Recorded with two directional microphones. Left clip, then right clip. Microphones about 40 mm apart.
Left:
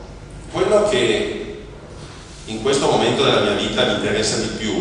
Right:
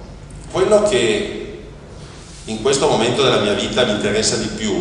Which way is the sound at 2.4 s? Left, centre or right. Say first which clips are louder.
Right 1 dB; right.